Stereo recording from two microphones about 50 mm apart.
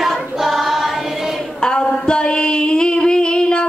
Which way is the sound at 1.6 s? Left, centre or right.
Centre.